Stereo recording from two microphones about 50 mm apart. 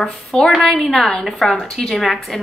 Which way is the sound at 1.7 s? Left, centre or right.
Centre.